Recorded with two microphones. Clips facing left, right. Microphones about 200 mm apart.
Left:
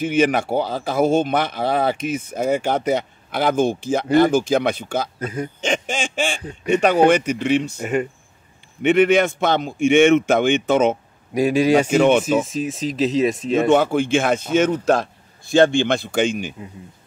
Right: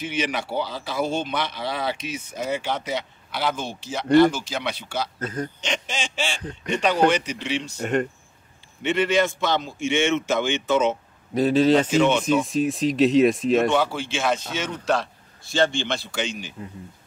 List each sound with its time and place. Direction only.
0.0 s speech: 50° left (ahead or behind)
5.2 s a man's voice: 10° left (ahead or behind)
5.6 s speech: 50° left (ahead or behind)
7.8 s speech: 5° left (ahead or behind)
8.8 s a man's voice: 55° left (ahead or behind)
11.3 s a man's voice: 10° left (ahead or behind)
11.9 s speech: 55° left (ahead or behind)
12.4 s speech: centre (ahead or behind)
13.7 s speech: 50° left (ahead or behind)